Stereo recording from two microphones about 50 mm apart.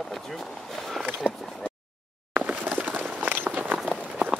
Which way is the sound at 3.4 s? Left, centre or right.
Right.